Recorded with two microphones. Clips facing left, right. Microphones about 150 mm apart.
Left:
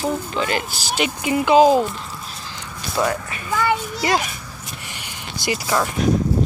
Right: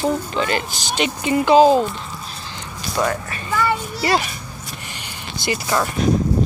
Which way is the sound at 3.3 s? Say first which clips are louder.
Even; 15° left (ahead or behind).